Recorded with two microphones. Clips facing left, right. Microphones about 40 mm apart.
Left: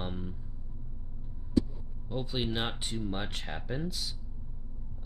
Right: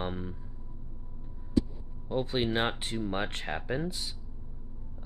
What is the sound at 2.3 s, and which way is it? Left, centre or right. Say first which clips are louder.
Speech: right 4 dB; centre.